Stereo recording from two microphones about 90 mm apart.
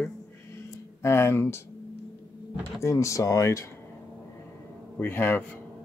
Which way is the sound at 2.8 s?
35° left (ahead or behind).